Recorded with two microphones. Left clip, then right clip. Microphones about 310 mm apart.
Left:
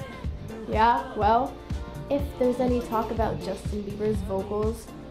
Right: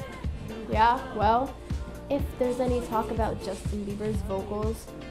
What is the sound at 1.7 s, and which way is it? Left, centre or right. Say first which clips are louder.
A woman's voice: left 2 dB; centre.